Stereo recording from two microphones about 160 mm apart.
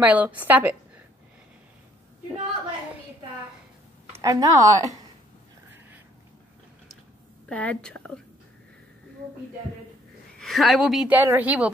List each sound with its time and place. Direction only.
0.0 s a woman's voice: 10° right (ahead or behind)
4.1 s speech: 20° right (ahead or behind)
7.4 s a woman's voice: 5° left (ahead or behind)
10.4 s a woman's voice: centre (ahead or behind)